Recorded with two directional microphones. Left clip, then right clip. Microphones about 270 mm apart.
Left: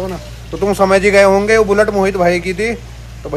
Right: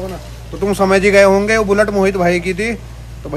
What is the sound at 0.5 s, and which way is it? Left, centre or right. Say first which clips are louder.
Speech: left 2 dB; centre.